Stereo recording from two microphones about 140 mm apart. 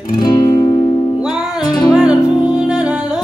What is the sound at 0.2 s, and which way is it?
Music, 25° left (ahead or behind).